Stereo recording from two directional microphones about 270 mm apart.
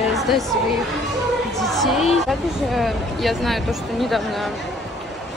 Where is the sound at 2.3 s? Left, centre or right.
Centre.